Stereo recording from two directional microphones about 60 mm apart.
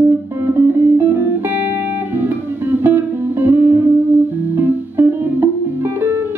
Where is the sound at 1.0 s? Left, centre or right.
Right.